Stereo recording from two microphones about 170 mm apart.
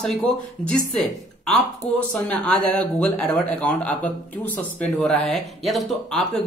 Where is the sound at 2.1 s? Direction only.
5° left (ahead or behind).